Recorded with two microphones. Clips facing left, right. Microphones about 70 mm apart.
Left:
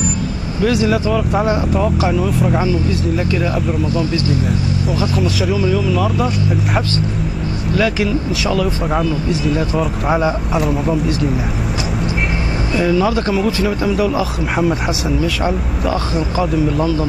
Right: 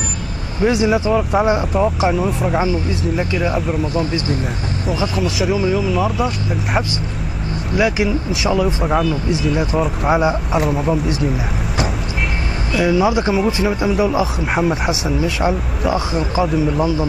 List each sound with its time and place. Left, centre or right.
0.7 s speech: centre
2.0 s speech: centre
3.2 s speech: right
3.9 s speech: right
5.1 s speech: centre
7.7 s speech: centre
8.6 s speech: centre
12.8 s speech: centre
14.5 s speech: centre